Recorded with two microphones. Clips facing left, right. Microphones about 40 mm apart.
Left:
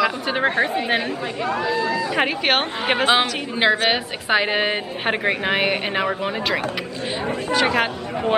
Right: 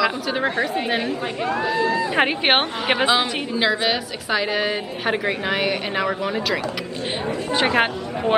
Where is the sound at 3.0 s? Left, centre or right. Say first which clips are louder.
Left 3 dB; left.